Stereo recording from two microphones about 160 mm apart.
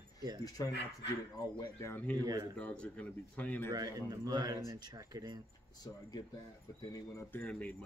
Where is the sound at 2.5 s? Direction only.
5° left (ahead or behind).